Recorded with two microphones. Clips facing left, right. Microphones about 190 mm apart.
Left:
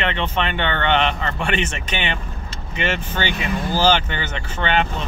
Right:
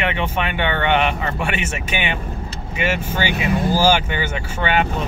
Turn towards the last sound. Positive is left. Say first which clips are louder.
# right 1 dB
turn(degrees=-10)  # may be behind; listen again after turning